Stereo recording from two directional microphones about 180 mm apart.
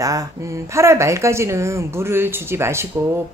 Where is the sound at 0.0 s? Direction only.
20° right (ahead or behind).